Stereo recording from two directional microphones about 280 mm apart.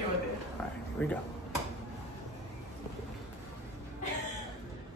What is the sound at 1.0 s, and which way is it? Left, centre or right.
Speech, centre.